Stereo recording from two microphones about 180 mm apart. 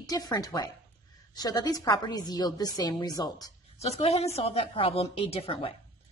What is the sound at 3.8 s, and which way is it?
Speech, 35° left (ahead or behind).